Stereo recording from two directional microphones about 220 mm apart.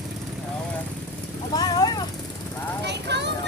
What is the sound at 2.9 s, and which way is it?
Vehicle, 50° right (ahead or behind).